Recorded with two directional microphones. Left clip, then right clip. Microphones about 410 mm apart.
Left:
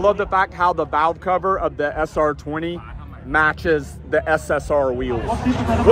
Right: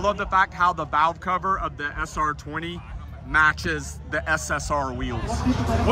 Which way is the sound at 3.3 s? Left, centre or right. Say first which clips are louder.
Left 3 dB; centre.